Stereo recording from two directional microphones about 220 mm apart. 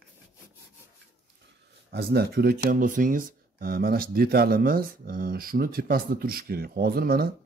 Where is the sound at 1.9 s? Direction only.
45° right (ahead or behind).